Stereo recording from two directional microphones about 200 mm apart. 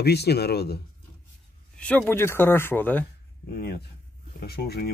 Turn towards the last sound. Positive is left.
turn(degrees=50)  # may be behind; listen again after turning